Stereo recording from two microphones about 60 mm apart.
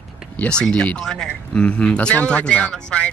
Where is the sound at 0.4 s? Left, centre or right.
Centre.